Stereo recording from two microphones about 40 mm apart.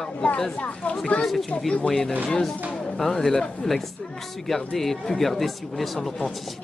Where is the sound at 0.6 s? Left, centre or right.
Left.